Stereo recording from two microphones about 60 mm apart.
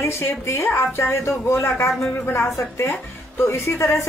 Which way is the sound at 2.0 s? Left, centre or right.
Left.